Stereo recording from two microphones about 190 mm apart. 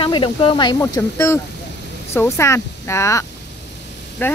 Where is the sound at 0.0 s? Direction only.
25° left (ahead or behind).